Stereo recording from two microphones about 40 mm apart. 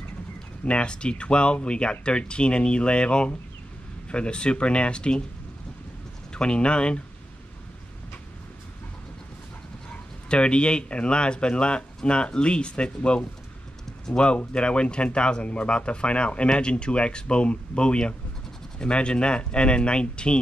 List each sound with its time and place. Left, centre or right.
0.7 s speech: left
6.3 s speech: left
10.3 s speech: left